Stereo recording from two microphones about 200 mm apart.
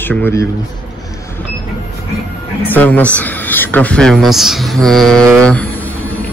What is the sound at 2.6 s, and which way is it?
Speech, 10° left (ahead or behind).